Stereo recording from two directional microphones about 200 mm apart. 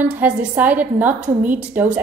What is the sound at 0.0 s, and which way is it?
A woman's voice, 10° right (ahead or behind).